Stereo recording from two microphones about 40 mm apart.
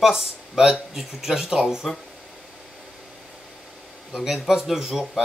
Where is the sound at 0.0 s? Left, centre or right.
Centre.